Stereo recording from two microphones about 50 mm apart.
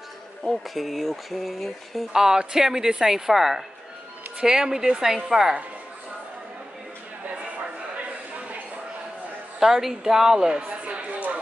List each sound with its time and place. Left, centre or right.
0.4 s speech: centre
2.1 s a woman's voice: centre
9.6 s a woman's voice: centre
10.7 s a sound: right